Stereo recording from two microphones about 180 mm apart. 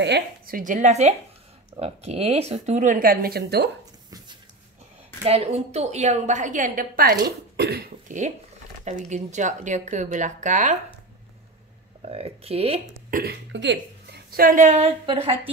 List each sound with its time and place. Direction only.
0.0 s a woman's voice: 60° right (ahead or behind)
5.2 s a woman's voice: 35° right (ahead or behind); by 7.2 s 50° right (ahead or behind)
7.2 s speech: 60° right (ahead or behind)
8.8 s a woman's voice: 40° right (ahead or behind)
12.0 s a woman's voice: 35° right (ahead or behind)
13.1 s a woman's voice: 60° right (ahead or behind); by 15.5 s 30° right (ahead or behind)